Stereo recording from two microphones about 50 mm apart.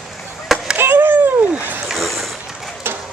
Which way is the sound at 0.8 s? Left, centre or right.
Right.